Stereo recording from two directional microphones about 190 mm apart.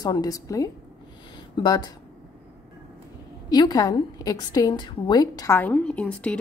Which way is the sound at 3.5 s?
20° left (ahead or behind).